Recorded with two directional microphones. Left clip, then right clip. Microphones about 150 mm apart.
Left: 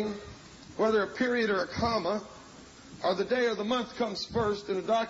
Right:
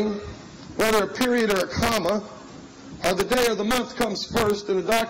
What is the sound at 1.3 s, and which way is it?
Speech, 25° left (ahead or behind).